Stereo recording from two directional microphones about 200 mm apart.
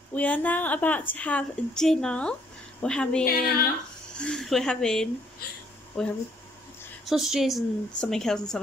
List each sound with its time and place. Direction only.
0.1 s a woman's voice: 5° left (ahead or behind)
3.3 s speech: 50° left (ahead or behind)
4.2 s a woman's voice: 5° left (ahead or behind)
5.4 s speech: 50° left (ahead or behind)
7.1 s a woman's voice: centre (ahead or behind)